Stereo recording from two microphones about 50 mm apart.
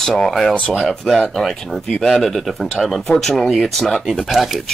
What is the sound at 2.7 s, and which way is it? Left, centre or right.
Speech, centre.